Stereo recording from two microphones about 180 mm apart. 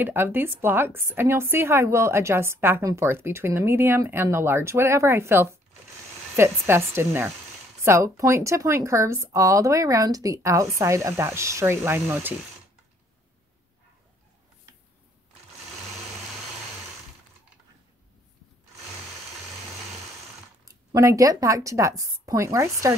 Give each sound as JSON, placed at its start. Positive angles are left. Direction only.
{"t": 0.0, "sound": "a woman's voice", "side_deg": -10}
{"t": 20.6, "sound": "a woman's voice", "side_deg": -15}